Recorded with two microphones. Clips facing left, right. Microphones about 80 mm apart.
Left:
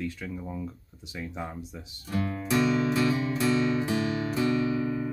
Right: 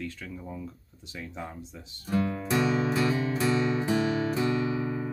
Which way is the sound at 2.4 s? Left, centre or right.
Right.